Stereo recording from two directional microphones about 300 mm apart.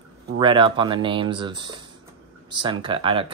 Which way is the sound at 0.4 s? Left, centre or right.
Centre.